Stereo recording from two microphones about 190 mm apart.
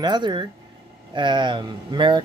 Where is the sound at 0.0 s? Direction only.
25° right (ahead or behind).